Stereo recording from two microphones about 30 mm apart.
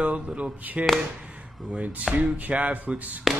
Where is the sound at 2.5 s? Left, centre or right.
Right.